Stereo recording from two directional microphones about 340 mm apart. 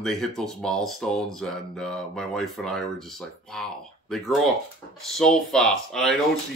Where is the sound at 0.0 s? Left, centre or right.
Centre.